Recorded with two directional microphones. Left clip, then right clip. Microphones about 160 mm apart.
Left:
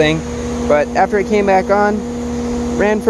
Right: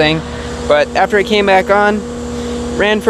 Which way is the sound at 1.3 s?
10° left (ahead or behind).